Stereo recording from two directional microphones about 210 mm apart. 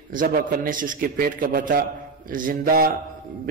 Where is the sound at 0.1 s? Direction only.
40° right (ahead or behind).